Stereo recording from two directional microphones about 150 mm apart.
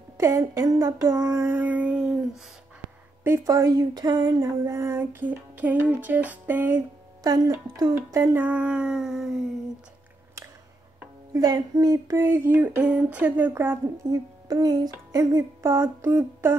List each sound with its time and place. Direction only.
0.2 s a sound: 20° right (ahead or behind); by 2.4 s 5° right (ahead or behind)
3.3 s speech: 20° right (ahead or behind)
7.2 s speech: 25° right (ahead or behind); by 9.5 s 5° right (ahead or behind)
11.3 s speech: 25° right (ahead or behind)
14.0 s speech: 25° right (ahead or behind)